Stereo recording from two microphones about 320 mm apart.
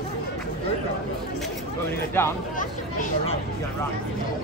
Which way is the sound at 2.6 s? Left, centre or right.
Left.